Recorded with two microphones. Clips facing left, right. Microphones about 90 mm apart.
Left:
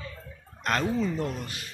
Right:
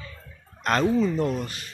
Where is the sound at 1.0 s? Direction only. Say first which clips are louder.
Right 5 dB; 20° right (ahead or behind).